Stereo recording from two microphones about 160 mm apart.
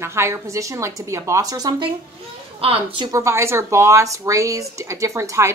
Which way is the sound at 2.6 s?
35° right (ahead or behind).